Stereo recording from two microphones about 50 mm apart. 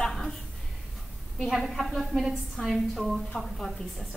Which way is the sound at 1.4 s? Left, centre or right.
Centre.